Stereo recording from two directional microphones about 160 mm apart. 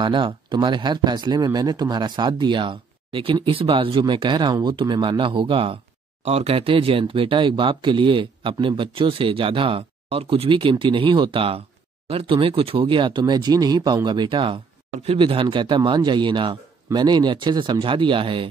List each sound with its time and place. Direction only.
0.0 s speech: 30° right (ahead or behind)